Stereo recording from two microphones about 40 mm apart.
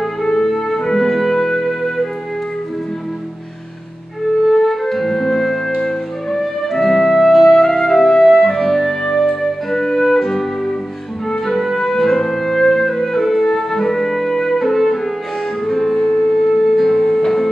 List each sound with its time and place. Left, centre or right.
0.0 s music: centre
4.5 s music: centre
16.1 s music: left
16.4 s music: centre